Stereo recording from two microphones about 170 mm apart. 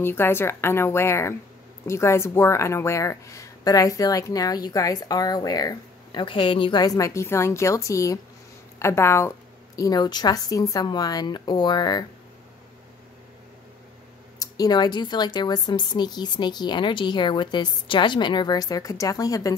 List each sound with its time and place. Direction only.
0.0 s a woman's voice: 15° left (ahead or behind)
14.4 s a woman's voice: 25° left (ahead or behind)